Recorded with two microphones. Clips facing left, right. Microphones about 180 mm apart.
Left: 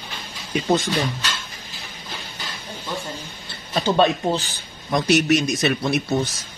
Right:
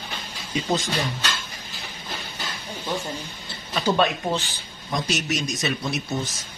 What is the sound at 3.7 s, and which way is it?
Speech, 30° left (ahead or behind).